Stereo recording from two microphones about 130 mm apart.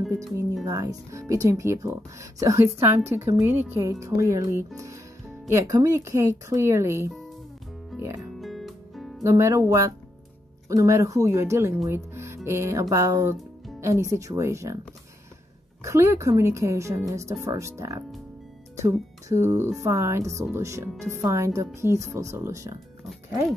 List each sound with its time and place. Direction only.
0.7 s speech: 25° right (ahead or behind)
8.4 s music: centre (ahead or behind)
9.2 s speech: 20° right (ahead or behind)
15.8 s speech: 20° right (ahead or behind)